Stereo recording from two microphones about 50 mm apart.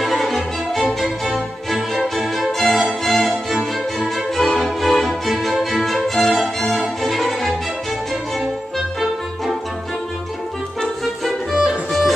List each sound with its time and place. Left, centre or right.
0.0 s music: centre
4.4 s music: centre
10.8 s music: centre